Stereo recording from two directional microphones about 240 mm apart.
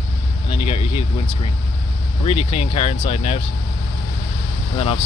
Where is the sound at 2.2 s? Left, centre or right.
Left.